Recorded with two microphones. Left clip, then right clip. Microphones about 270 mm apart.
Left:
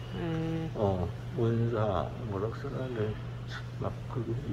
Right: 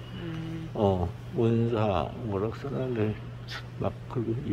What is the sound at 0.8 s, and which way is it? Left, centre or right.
Speech, right.